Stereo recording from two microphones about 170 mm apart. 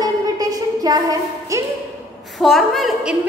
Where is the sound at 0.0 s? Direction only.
20° right (ahead or behind).